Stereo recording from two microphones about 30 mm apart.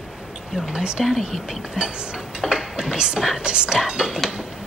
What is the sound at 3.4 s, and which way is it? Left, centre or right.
Speech, right.